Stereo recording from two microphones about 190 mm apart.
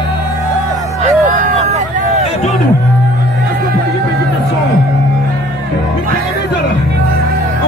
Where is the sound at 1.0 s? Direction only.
40° right (ahead or behind).